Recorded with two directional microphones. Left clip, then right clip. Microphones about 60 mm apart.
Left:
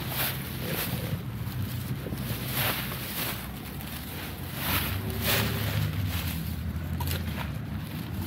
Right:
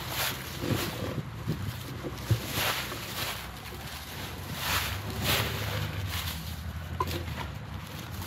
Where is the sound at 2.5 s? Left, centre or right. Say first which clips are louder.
Even; centre.